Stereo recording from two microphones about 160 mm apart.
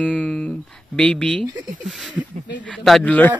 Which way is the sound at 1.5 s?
Centre (ahead or behind).